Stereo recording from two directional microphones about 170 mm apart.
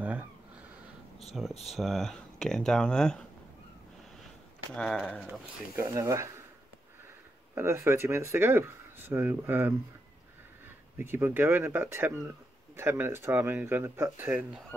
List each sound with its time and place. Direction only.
0.0 s a sound: 10° right (ahead or behind)
1.5 s speech: 40° left (ahead or behind)
1.8 s speech: centre (ahead or behind)
4.7 s speech: 5° left (ahead or behind)
5.8 s speech: 20° right (ahead or behind)
7.5 s speech: 15° right (ahead or behind)
11.0 s speech: 15° right (ahead or behind)